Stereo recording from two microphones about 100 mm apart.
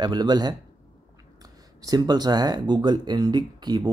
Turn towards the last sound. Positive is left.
turn(degrees=-45)  # may be behind; listen again after turning